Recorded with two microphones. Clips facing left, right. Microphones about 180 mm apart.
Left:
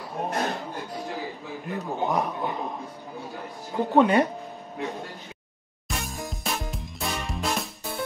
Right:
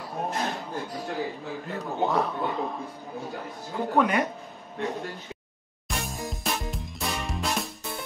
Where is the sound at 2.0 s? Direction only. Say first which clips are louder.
Right 1 dB; 15° left (ahead or behind).